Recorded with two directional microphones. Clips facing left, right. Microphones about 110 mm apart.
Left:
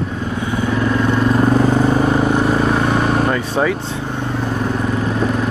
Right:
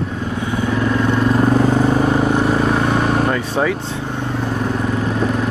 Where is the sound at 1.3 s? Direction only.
20° left (ahead or behind).